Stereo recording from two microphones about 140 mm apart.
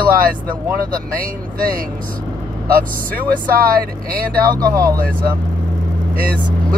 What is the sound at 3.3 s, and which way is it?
Speech, 90° right.